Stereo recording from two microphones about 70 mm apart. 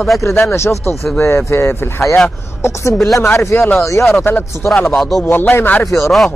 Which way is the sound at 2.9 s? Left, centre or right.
Centre.